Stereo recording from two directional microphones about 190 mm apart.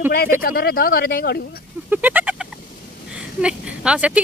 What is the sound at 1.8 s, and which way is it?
Speech, 10° right (ahead or behind).